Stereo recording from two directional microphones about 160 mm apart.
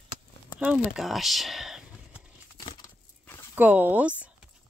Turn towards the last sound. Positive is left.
turn(degrees=-10)  # may be behind; listen again after turning